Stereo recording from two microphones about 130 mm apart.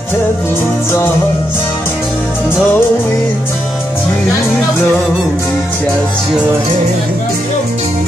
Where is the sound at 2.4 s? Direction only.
15° left (ahead or behind).